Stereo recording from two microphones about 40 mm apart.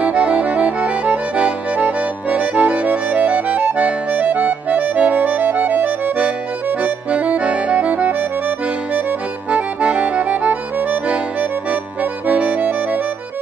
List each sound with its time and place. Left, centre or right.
0.0 s accordion: right
6.8 s accordion: right
9.5 s accordion: right